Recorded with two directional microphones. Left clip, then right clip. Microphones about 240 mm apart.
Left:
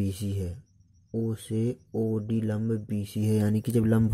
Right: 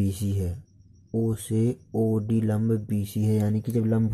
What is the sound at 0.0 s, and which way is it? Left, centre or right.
Speech, centre.